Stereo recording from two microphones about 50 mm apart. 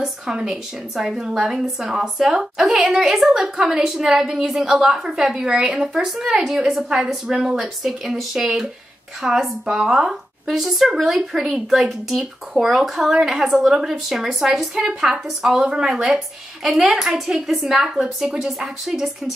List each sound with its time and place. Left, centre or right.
0.0 s a woman's voice: centre
17.5 s a woman's voice: centre